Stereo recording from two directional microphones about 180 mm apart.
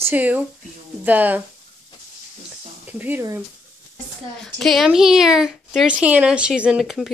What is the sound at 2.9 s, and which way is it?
Speech, 10° right (ahead or behind).